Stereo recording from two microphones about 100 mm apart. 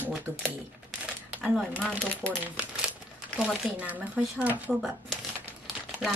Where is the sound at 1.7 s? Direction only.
10° left (ahead or behind).